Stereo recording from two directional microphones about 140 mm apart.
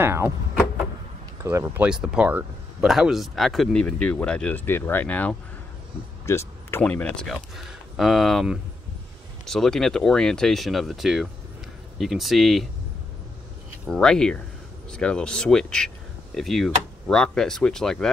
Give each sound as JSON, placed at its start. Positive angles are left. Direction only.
{"t": 0.0, "sound": "speech", "side_deg": -20}
{"t": 1.4, "sound": "speech", "side_deg": -20}
{"t": 1.9, "sound": "speech", "side_deg": -5}
{"t": 6.2, "sound": "a sound", "side_deg": 20}
{"t": 6.8, "sound": "speech", "side_deg": 10}
{"t": 13.8, "sound": "speech", "side_deg": 5}